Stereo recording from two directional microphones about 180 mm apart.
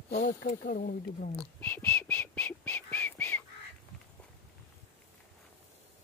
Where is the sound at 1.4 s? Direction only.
10° left (ahead or behind).